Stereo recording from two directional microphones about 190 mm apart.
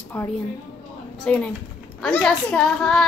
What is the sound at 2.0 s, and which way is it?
A woman's voice, 5° left (ahead or behind).